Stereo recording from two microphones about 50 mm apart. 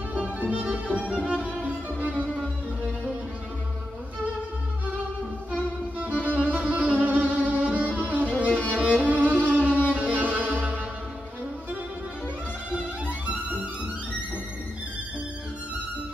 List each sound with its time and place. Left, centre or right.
0.2 s violin: right
6.4 s music: right
12.7 s music: right